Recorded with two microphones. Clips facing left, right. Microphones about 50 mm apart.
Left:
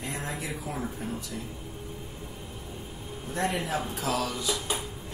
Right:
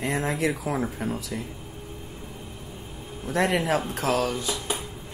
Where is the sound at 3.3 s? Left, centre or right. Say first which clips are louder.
Right 6 dB; right.